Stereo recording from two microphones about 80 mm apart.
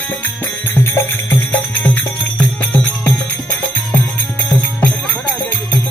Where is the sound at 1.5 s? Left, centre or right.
Centre.